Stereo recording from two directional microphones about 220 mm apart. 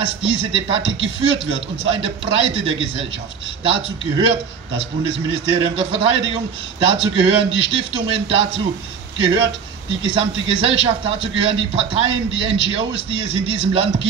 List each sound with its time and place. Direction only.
0.0 s a man's voice: 25° right (ahead or behind)